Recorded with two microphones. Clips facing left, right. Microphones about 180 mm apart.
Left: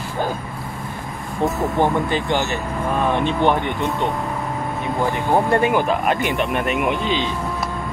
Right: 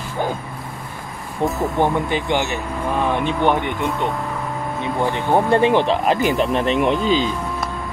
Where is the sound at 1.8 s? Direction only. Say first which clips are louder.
Even; 15° right (ahead or behind).